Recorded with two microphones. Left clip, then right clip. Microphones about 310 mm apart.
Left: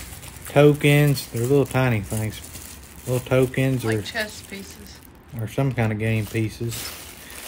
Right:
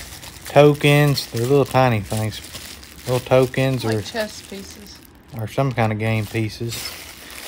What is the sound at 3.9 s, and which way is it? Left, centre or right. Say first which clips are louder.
Speech: right 2 dB; centre.